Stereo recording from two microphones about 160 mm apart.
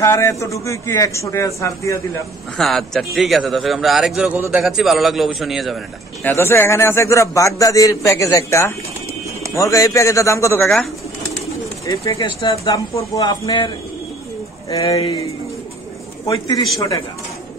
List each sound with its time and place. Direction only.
0.0 s a man's voice: 20° left (ahead or behind)
2.5 s a man's voice: centre (ahead or behind)
6.2 s a man's voice: 15° left (ahead or behind)
11.8 s speech: 20° left (ahead or behind)
12.2 s speech: 30° left (ahead or behind)
12.4 s a man's voice: 20° left (ahead or behind)
14.7 s a man's voice: 20° left (ahead or behind)
16.3 s a man's voice: 25° left (ahead or behind)